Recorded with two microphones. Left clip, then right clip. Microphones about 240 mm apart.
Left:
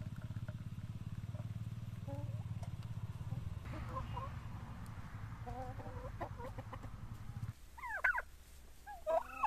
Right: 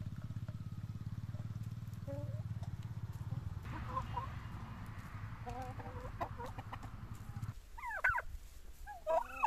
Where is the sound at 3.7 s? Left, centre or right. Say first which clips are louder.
Right 4 dB; right.